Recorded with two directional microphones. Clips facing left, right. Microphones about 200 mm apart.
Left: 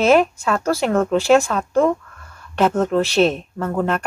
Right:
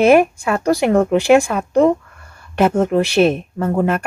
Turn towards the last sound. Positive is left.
turn(degrees=-10)  # may be behind; listen again after turning